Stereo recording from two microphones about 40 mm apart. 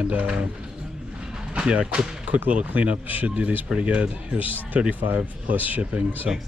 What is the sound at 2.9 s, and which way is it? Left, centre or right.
A man's voice, right.